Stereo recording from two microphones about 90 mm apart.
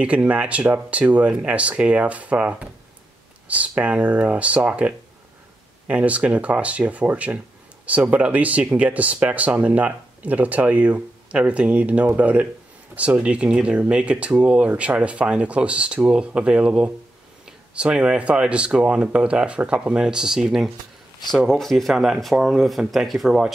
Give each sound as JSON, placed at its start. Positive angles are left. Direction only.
{"t": 0.0, "sound": "speech", "side_deg": -15}